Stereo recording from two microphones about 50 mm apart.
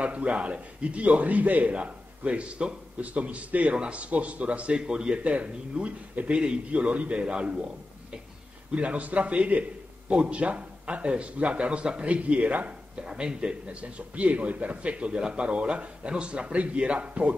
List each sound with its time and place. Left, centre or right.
0.0 s a man's voice: right
8.7 s a man's voice: right
13.0 s a man's voice: centre